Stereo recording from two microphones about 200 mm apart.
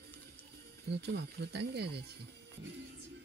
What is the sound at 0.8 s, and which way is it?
Speech, 55° right (ahead or behind).